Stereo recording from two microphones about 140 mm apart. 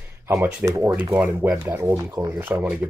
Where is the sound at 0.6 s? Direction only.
25° right (ahead or behind).